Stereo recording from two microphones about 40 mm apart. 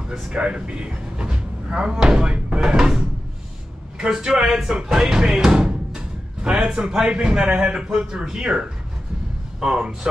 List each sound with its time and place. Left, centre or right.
0.3 s speech: right
2.6 s speech: centre
5.0 s music: centre
6.9 s speech: right